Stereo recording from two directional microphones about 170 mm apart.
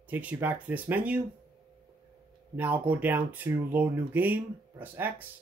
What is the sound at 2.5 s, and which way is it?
Speech, 10° right (ahead or behind).